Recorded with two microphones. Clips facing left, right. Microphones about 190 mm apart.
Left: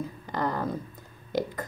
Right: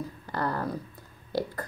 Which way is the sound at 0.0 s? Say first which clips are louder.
Left 1 dB; 20° left (ahead or behind).